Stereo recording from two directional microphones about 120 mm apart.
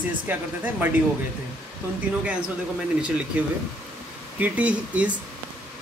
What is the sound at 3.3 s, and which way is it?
Speech, 10° right (ahead or behind).